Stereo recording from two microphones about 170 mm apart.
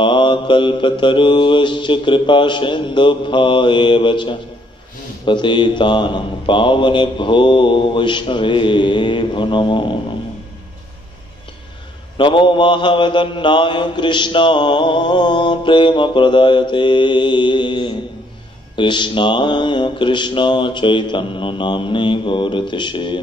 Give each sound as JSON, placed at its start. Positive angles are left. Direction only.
{"t": 0.0, "sound": "mantra", "side_deg": 30}
{"t": 12.2, "sound": "mantra", "side_deg": 30}